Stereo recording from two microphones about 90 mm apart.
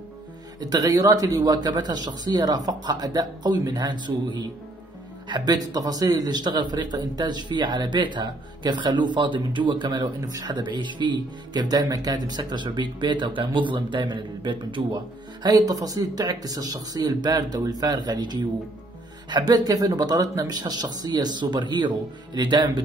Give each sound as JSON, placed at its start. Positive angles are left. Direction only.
{"t": 0.6, "sound": "a man's voice", "side_deg": -45}
{"t": 15.4, "sound": "speech", "side_deg": -45}